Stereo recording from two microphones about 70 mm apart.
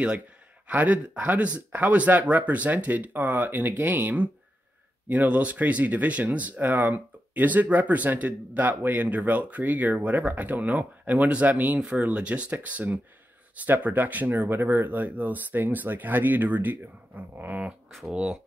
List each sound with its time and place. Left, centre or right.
0.7 s speech: right